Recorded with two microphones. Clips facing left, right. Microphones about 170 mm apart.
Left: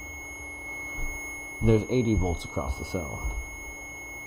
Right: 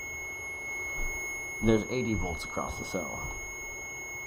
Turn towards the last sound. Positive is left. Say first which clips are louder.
# left 2 dB
turn(degrees=5)  # may be behind; listen again after turning